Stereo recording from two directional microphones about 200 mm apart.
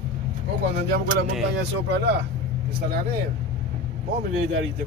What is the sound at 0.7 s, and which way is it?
Speech, 50° right (ahead or behind).